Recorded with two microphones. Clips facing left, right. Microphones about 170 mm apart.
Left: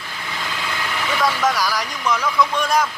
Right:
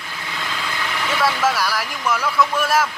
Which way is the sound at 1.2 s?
5° right (ahead or behind).